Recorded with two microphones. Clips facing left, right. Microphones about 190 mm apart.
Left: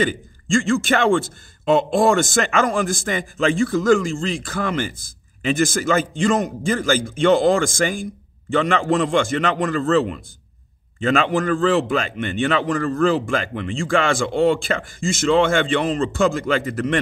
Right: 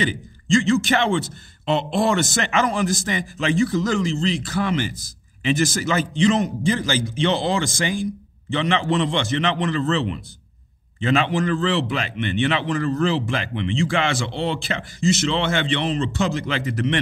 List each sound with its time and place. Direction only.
0.0 s a man's voice: 50° left (ahead or behind)